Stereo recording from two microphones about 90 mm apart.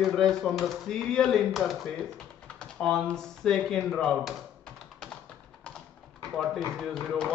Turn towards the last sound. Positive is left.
turn(degrees=5)  # may be behind; listen again after turning